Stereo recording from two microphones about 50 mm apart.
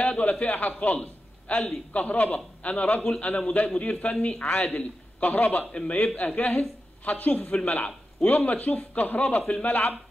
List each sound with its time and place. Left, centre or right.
0.0 s a man's voice: left
5.7 s a man's voice: left